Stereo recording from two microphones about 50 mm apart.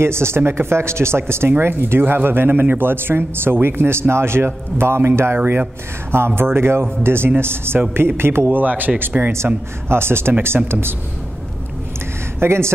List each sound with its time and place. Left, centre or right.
0.0 s speech: right
9.8 s speech: right
12.4 s speech: right